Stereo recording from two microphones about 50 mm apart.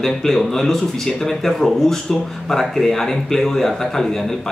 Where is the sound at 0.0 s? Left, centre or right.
Centre.